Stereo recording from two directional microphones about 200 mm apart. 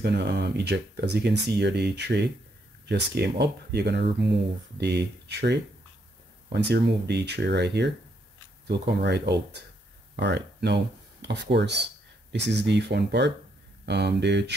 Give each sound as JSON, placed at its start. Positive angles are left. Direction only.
{"t": 0.0, "sound": "speech", "side_deg": -55}